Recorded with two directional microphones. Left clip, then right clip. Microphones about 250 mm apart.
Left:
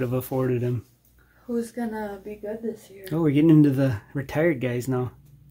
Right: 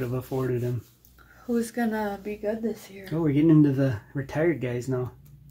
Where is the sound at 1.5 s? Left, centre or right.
Right.